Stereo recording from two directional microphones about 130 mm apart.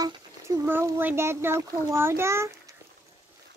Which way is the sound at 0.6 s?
15° right (ahead or behind).